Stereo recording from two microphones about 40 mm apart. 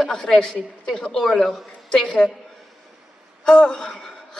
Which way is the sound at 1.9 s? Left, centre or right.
Left.